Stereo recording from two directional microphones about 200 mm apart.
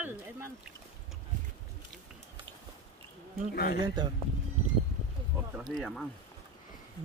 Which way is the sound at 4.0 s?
20° right (ahead or behind).